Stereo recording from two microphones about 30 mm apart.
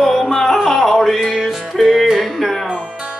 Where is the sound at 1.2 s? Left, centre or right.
Centre.